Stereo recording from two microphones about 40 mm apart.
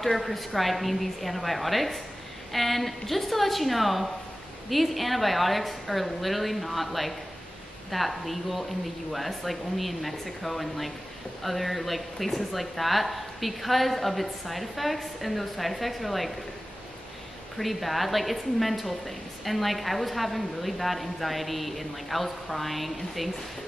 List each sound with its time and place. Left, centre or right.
0.0 s a woman's voice: centre
17.6 s a woman's voice: centre